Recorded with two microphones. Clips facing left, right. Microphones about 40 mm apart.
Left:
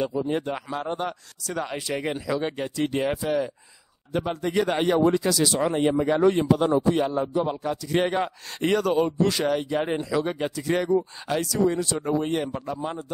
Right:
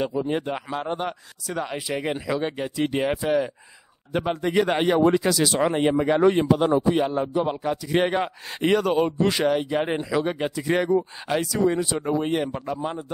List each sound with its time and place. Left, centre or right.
0.3 s speech: centre
2.4 s a man's voice: centre; by 9.4 s right
9.4 s a man's voice: centre